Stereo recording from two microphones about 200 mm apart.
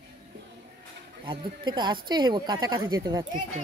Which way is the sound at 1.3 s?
20° right (ahead or behind).